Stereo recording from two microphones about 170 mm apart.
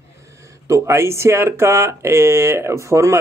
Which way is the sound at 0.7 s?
15° right (ahead or behind).